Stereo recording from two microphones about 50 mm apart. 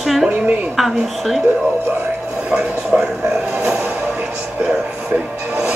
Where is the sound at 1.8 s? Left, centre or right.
Right.